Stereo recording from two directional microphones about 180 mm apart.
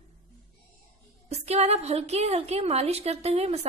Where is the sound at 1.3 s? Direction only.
35° right (ahead or behind).